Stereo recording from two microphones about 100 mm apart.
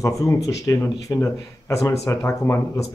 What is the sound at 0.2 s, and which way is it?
Speech, 30° left (ahead or behind).